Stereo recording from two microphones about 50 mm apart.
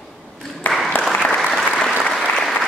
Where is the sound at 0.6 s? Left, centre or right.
Left.